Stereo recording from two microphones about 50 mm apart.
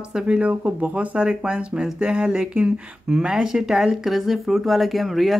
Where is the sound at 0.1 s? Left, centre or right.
Right.